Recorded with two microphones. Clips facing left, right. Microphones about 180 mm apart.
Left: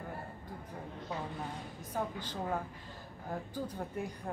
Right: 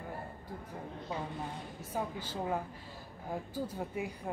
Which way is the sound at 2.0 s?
10° right (ahead or behind).